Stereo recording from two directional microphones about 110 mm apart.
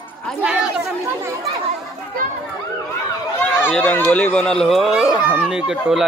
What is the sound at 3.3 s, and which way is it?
Speech, 20° left (ahead or behind).